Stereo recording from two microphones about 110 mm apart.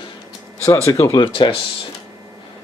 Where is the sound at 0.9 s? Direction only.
30° left (ahead or behind).